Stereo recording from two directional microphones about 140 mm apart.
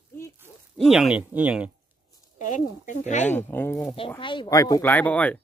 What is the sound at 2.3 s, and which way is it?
Speech, 65° left (ahead or behind).